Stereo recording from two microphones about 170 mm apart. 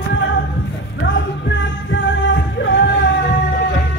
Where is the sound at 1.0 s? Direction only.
90° left.